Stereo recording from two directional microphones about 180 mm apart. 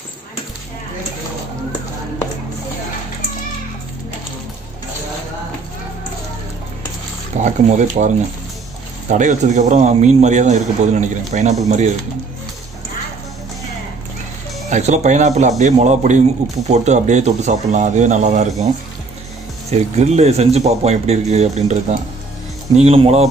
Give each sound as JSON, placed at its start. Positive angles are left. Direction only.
{"t": 7.4, "sound": "speech", "side_deg": -40}
{"t": 9.1, "sound": "speech", "side_deg": -45}
{"t": 14.7, "sound": "speech", "side_deg": -40}
{"t": 19.7, "sound": "speech", "side_deg": -35}